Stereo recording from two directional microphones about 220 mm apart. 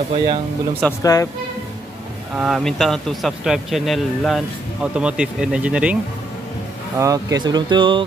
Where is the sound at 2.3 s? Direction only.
Centre (ahead or behind).